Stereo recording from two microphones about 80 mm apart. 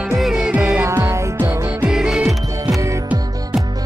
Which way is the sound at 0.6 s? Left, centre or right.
Right.